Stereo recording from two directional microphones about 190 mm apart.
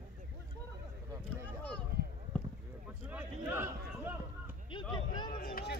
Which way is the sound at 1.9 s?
55° right (ahead or behind).